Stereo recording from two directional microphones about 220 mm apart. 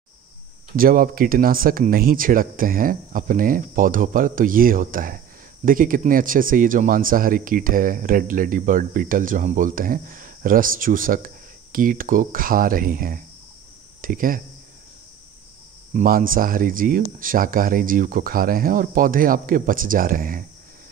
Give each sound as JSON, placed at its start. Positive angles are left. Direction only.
{"t": 0.7, "sound": "speech", "side_deg": -40}
{"t": 15.9, "sound": "speech", "side_deg": -40}